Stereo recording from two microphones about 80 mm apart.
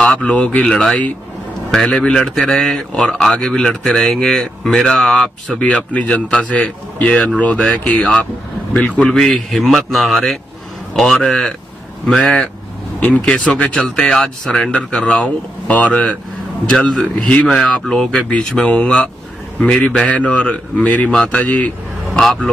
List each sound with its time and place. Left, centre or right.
0.0 s speech: centre
0.7 s speech: centre
22.2 s speech: centre